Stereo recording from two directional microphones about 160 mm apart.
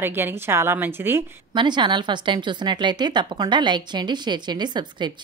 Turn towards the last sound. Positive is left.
turn(degrees=-30)  # may be behind; listen again after turning